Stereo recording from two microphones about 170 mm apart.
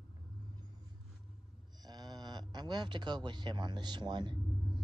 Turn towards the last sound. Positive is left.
turn(degrees=-25)  # may be behind; listen again after turning